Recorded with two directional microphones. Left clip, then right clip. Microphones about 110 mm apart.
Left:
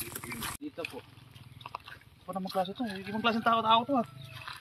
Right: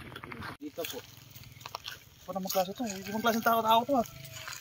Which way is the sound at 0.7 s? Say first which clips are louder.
Right 1 dB; 5° right (ahead or behind).